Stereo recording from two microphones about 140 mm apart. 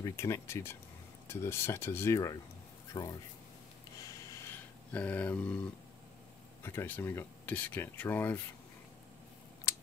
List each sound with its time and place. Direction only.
0.0 s speech: 20° left (ahead or behind)
2.9 s speech: 35° left (ahead or behind)
4.5 s speech: 10° left (ahead or behind)
9.7 s typing: 25° left (ahead or behind)